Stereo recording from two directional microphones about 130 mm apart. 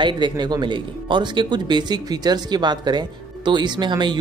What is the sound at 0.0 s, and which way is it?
Speech, 35° right (ahead or behind).